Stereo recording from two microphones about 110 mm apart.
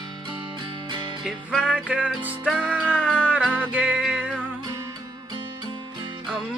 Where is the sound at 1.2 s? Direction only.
5° right (ahead or behind).